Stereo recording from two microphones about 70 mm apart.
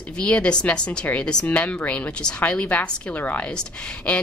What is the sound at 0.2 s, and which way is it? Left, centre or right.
A woman's voice, centre.